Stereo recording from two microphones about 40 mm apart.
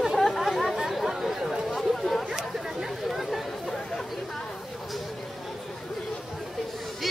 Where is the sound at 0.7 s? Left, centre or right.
Centre.